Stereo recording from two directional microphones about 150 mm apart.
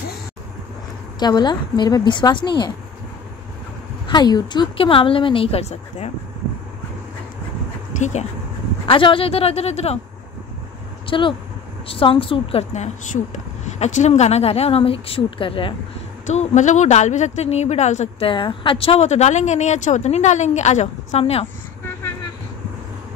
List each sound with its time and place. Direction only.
1.2 s a woman's voice: 30° left (ahead or behind)
4.1 s a woman's voice: 30° left (ahead or behind); by 6.1 s 45° left (ahead or behind)
7.9 s speech: 50° left (ahead or behind)
8.8 s a woman's voice: 35° left (ahead or behind)
11.1 s a woman's voice: 35° left (ahead or behind)
16.3 s a woman's voice: 50° left (ahead or behind)
18.3 s a woman's voice: 35° left (ahead or behind)